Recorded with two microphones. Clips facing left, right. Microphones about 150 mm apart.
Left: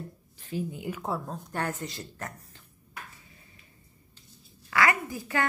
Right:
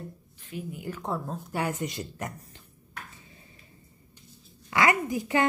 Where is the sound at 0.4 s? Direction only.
30° left (ahead or behind).